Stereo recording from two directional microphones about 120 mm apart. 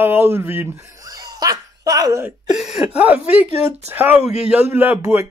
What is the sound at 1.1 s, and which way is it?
Laughter, 30° right (ahead or behind).